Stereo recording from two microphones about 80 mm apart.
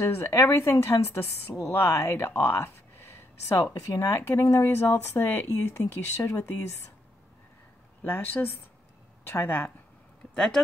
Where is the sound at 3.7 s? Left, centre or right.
Left.